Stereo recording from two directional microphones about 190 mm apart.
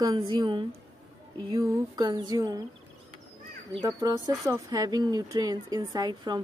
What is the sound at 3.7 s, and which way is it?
A woman's voice, 20° right (ahead or behind).